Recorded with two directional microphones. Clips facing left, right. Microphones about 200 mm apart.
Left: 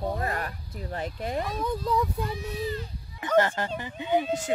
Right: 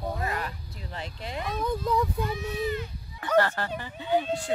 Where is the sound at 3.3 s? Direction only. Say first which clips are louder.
Left 1 dB; 20° left (ahead or behind).